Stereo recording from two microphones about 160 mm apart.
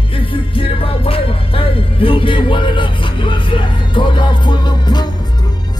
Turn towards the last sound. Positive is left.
turn(degrees=25)  # may be behind; listen again after turning